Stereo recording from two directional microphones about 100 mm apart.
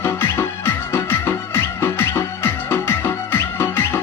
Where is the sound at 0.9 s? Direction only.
25° left (ahead or behind).